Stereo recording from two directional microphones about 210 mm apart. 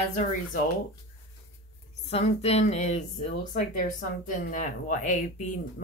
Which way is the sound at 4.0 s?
40° left (ahead or behind).